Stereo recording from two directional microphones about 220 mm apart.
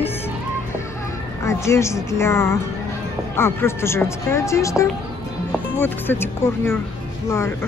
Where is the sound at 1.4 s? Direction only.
10° left (ahead or behind).